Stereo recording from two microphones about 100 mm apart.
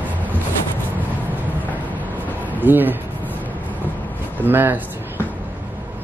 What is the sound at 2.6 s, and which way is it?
Speech, 20° right (ahead or behind).